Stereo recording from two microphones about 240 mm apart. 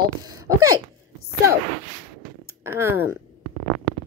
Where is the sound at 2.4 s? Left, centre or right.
Centre.